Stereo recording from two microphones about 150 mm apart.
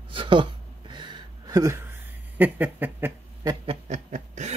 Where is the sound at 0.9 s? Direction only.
30° right (ahead or behind).